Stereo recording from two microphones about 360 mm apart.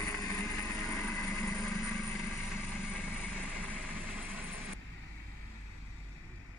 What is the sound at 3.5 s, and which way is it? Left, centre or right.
Vehicle, centre.